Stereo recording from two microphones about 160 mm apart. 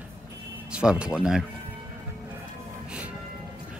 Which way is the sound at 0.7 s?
5° right (ahead or behind).